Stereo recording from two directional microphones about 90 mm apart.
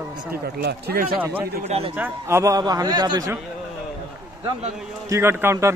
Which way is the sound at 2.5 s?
45° right (ahead or behind).